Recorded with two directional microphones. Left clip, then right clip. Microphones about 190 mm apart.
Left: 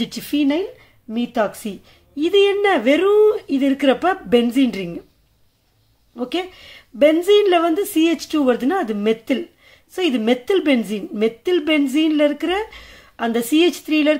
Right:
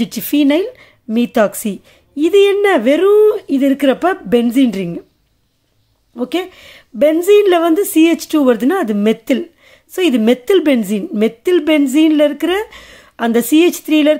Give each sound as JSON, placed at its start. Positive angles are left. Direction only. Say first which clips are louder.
{"t": 0.0, "sound": "speech", "louder": "right 6 dB", "side_deg": -35}
{"t": 6.1, "sound": "a woman's voice", "louder": "right 5 dB", "side_deg": -30}